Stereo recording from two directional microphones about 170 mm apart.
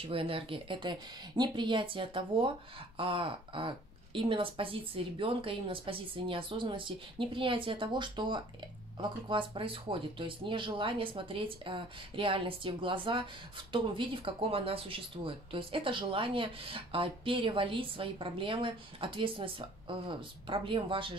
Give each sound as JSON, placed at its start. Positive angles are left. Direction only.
{"t": 0.0, "sound": "speech", "side_deg": -30}